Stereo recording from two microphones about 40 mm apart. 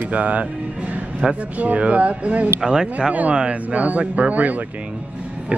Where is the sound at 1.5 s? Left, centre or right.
Right.